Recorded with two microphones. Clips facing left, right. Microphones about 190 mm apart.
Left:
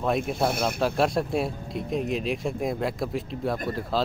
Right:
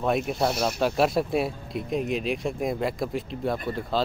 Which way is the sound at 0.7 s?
Centre (ahead or behind).